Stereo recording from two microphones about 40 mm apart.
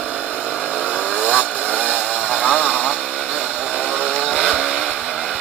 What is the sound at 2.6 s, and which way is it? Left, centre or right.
Chainsaw, right.